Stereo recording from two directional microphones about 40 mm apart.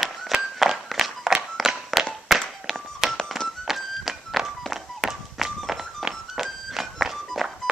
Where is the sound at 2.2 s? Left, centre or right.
Centre.